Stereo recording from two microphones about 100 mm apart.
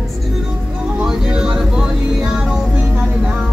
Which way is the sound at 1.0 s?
5° right (ahead or behind).